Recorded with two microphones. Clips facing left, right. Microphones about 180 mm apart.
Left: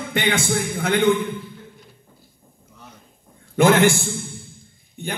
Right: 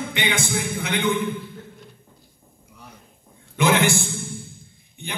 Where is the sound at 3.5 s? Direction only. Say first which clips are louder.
Left 5 dB; 45° left (ahead or behind).